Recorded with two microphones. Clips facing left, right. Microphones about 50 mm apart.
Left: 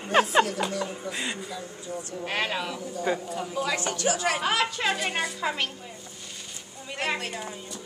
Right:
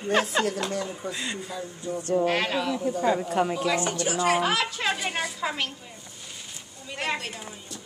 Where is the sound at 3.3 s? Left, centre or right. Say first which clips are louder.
Right 7 dB; right.